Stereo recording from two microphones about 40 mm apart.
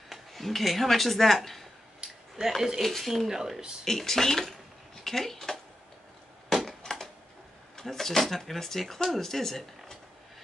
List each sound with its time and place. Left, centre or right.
0.1 s speech: centre
2.0 s a sound: centre
2.8 s speech: centre
3.8 s speech: centre
6.8 s a sound: centre
7.7 s speech: centre